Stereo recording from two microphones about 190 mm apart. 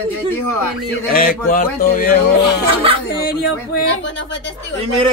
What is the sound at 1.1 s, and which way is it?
Speech, 50° left (ahead or behind).